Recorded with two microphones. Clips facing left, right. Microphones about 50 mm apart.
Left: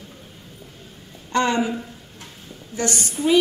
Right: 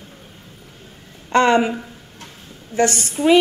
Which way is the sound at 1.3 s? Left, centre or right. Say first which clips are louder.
Right 6 dB; right.